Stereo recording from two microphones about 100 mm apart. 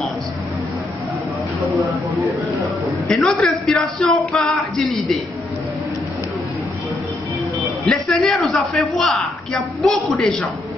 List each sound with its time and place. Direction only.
3.1 s speech: 5° left (ahead or behind)
7.8 s a man's voice: centre (ahead or behind)